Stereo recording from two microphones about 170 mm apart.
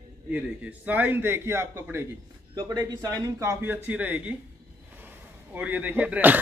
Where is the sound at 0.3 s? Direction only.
10° right (ahead or behind).